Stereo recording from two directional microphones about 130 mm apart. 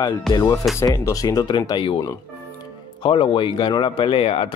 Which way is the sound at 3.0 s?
40° left (ahead or behind).